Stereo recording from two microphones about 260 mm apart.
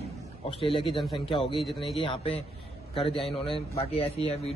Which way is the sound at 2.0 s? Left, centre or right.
Left.